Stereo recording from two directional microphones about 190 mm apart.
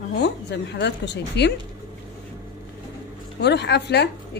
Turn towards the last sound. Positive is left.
turn(degrees=60)  # may be behind; listen again after turning